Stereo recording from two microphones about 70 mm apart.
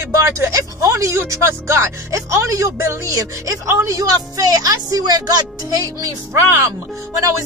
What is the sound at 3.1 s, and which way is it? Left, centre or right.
A woman's voice, right.